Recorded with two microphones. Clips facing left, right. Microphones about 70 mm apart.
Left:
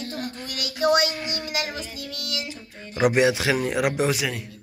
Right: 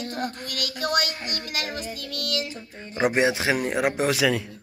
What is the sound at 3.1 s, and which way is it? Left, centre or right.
Speech, right.